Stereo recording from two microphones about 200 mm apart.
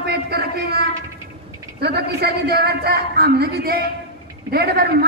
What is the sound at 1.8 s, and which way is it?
A man's voice, 50° right (ahead or behind).